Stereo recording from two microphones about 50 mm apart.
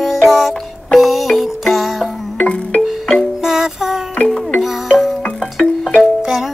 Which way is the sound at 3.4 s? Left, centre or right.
Centre.